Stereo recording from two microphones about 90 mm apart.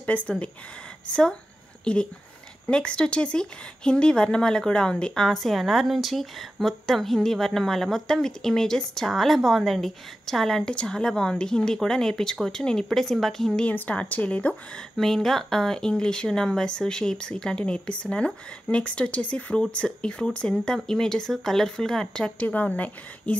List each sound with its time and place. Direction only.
0.0 s speech: 15° left (ahead or behind)
13.7 s speech: 15° left (ahead or behind)
15.0 s speech: 5° left (ahead or behind)